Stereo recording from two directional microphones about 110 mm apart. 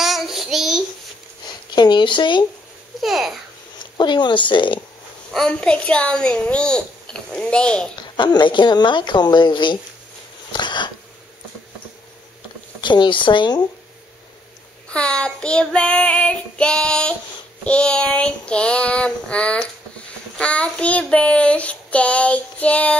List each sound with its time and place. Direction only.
0.0 s child singing: centre (ahead or behind)
1.8 s a sound: 45° left (ahead or behind)
3.0 s a child's voice: centre (ahead or behind)
3.8 s speech: 45° left (ahead or behind)
5.3 s a child's voice: 5° left (ahead or behind)
8.0 s speech: 40° left (ahead or behind)
10.5 s a sound: 45° left (ahead or behind)
12.8 s speech: 45° left (ahead or behind)
14.9 s a child's voice: 10° left (ahead or behind)